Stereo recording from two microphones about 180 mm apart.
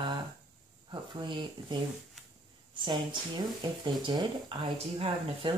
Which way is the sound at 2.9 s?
25° right (ahead or behind).